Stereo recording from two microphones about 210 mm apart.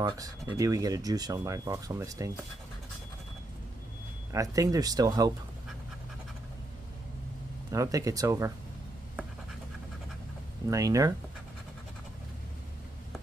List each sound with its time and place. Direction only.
0.0 s speech: 15° right (ahead or behind)
4.3 s speech: 15° right (ahead or behind)
7.7 s speech: 15° right (ahead or behind)
10.7 s speech: 15° right (ahead or behind)